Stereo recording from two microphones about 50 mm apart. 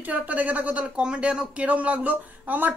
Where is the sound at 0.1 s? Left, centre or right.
Right.